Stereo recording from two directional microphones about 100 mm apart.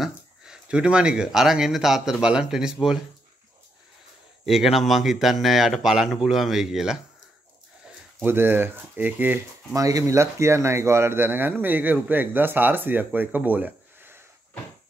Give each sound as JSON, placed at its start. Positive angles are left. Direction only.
{"t": 0.0, "sound": "speech", "side_deg": -10}
{"t": 4.5, "sound": "a man's voice", "side_deg": -5}
{"t": 8.2, "sound": "speech", "side_deg": -20}
{"t": 9.8, "sound": "speech", "side_deg": -35}